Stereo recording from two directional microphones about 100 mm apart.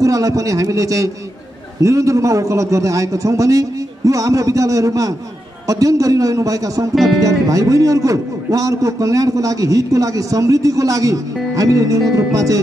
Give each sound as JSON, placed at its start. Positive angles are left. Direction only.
{"t": 0.0, "sound": "a man's voice", "side_deg": -35}